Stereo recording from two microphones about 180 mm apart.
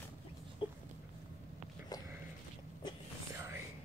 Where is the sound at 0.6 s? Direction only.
30° left (ahead or behind).